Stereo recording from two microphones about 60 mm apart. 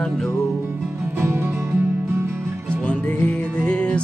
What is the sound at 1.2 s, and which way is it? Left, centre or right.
Music, right.